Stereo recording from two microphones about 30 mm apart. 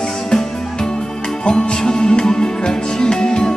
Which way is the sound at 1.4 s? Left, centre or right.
Left.